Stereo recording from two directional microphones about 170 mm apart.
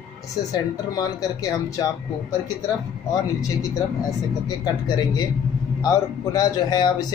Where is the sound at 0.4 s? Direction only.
20° left (ahead or behind).